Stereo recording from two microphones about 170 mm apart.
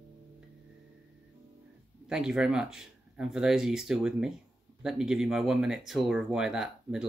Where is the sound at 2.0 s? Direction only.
5° right (ahead or behind).